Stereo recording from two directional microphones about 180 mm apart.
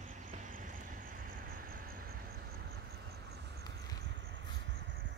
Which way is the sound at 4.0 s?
80° right.